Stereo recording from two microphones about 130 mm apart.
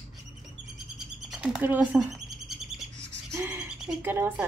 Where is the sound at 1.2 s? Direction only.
5° right (ahead or behind).